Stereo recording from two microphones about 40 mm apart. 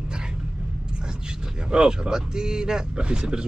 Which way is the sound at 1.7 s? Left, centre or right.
Right.